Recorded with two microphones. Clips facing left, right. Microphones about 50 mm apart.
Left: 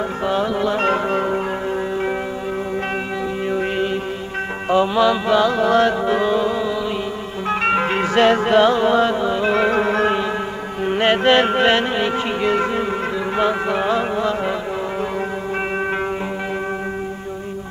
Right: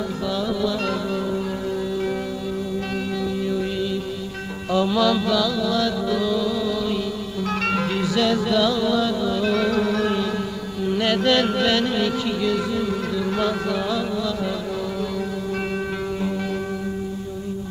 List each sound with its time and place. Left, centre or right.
0.3 s music: left
3.4 s music: left
4.6 s music: left
10.9 s carnatic music: left
13.4 s music: left